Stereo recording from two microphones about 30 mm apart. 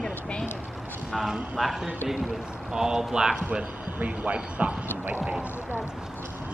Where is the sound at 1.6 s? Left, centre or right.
Centre.